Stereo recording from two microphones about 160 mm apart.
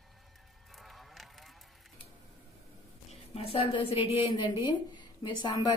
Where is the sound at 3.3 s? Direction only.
35° left (ahead or behind).